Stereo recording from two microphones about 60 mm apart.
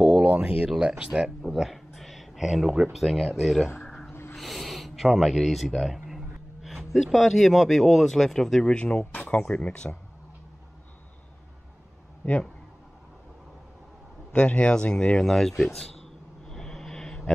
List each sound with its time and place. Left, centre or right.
0.0 s a sound: centre
0.7 s speech: centre
1.4 s speech: centre
4.1 s owl: left
4.4 s speech: centre
8.6 s speech: centre
14.3 s speech: centre
15.6 s a sound: centre